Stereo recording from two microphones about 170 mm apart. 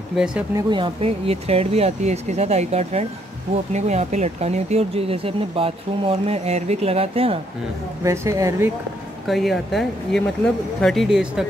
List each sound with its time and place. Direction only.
0.1 s speech: 5° right (ahead or behind)
0.6 s speech: 30° right (ahead or behind)
8.0 s speech: 15° right (ahead or behind)
9.3 s speech: centre (ahead or behind)